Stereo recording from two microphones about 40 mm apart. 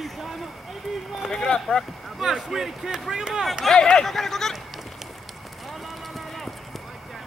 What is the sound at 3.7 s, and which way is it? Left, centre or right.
Speech, centre.